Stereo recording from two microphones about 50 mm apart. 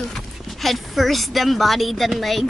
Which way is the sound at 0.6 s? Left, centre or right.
Centre.